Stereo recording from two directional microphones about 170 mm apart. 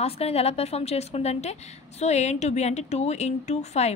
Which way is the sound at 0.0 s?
35° left (ahead or behind).